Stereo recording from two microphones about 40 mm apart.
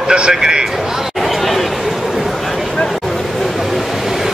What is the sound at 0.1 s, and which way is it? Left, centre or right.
Speech, centre.